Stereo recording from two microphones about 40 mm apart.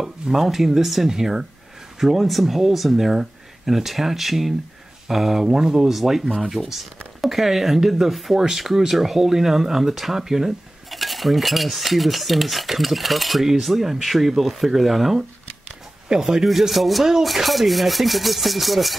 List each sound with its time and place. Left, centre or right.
0.0 s speech: centre
2.0 s cutlery: centre
5.0 s speech: centre
6.6 s speech: centre
7.2 s speech: centre
10.9 s cutlery: centre
16.1 s speech: centre
16.4 s cutlery: centre